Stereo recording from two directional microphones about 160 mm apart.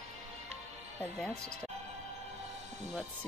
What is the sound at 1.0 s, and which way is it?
Speech, 10° left (ahead or behind).